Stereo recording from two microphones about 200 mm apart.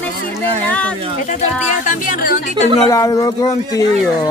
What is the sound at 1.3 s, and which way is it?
Speech, 40° left (ahead or behind).